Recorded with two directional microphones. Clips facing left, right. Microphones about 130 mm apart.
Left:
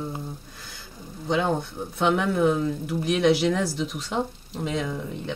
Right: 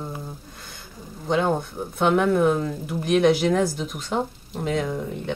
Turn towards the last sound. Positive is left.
turn(degrees=0)  # may be behind; listen again after turning